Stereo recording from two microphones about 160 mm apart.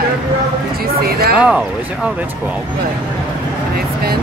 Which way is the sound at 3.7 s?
70° right (ahead or behind).